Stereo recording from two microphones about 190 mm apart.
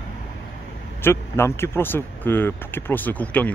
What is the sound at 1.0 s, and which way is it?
Speech, 15° left (ahead or behind).